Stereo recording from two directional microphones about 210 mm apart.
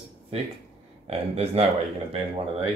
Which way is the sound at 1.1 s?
30° right (ahead or behind).